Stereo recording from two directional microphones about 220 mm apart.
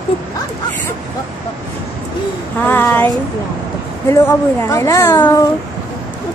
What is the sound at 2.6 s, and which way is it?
A woman's voice, 10° left (ahead or behind).